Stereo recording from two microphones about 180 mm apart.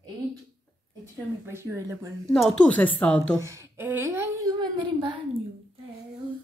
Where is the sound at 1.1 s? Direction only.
15° right (ahead or behind).